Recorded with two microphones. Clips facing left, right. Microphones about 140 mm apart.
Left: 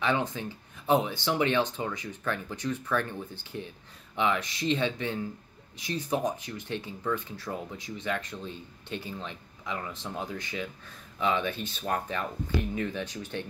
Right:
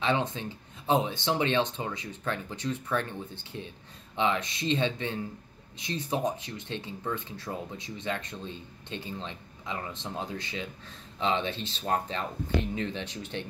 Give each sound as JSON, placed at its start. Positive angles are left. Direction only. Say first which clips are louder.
{"t": 0.0, "sound": "speech", "louder": "even", "side_deg": -25}